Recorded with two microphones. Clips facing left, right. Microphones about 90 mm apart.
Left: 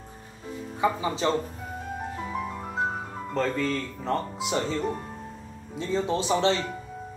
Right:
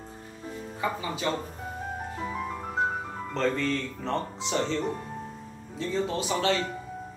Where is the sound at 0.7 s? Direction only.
25° left (ahead or behind).